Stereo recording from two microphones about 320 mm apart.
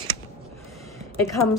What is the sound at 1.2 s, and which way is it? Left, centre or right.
Speech, centre.